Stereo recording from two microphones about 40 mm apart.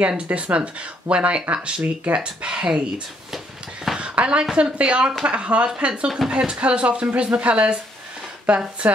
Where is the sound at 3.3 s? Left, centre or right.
Centre.